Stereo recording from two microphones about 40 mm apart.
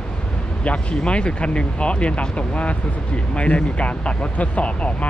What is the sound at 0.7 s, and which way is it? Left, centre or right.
Speech, left.